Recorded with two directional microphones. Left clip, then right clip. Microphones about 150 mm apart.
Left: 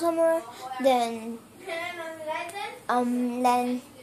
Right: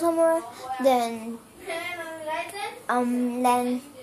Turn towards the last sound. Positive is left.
turn(degrees=-10)  # may be behind; listen again after turning